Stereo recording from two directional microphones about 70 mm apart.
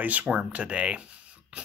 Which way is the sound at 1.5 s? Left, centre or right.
Centre.